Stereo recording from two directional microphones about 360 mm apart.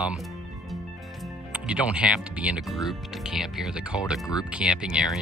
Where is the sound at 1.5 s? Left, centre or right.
Centre.